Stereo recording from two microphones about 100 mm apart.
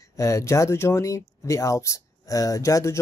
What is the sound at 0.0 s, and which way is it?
Speech, 30° left (ahead or behind).